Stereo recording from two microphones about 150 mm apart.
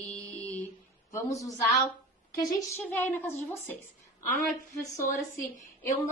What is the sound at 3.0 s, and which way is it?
A woman's voice, 15° left (ahead or behind).